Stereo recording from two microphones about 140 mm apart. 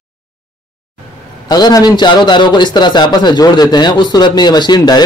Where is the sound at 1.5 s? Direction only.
25° left (ahead or behind).